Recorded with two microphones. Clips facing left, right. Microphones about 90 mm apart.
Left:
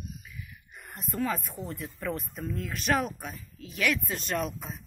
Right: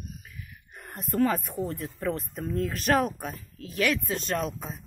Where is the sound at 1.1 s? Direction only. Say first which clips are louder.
Right 6 dB; 55° right (ahead or behind).